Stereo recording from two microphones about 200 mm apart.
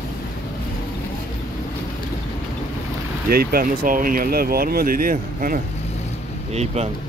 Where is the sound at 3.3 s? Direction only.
50° right (ahead or behind).